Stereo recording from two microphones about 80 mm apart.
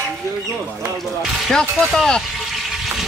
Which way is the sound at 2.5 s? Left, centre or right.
Centre.